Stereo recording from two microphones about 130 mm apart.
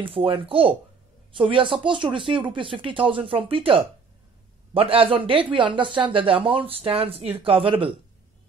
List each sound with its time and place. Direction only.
0.0 s speech: 45° right (ahead or behind)